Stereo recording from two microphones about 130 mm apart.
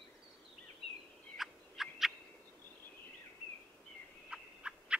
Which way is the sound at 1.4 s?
Centre (ahead or behind).